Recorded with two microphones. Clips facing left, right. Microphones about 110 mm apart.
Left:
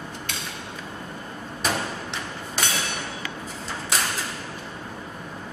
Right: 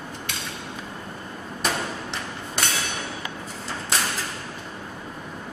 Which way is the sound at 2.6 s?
Centre (ahead or behind).